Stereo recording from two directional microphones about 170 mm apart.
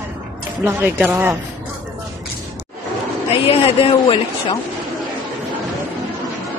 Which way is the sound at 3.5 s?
35° left (ahead or behind).